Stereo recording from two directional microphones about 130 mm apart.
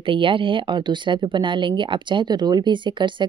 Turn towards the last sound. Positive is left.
turn(degrees=-35)  # may be behind; listen again after turning